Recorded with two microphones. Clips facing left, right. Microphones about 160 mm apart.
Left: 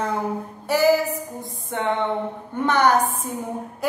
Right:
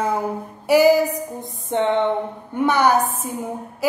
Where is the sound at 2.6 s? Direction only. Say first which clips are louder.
Right 2 dB; 10° right (ahead or behind).